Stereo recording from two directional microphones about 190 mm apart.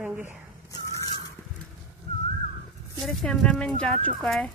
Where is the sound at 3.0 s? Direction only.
Centre (ahead or behind).